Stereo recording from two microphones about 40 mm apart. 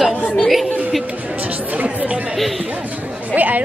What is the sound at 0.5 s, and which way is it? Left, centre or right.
Chatter, centre.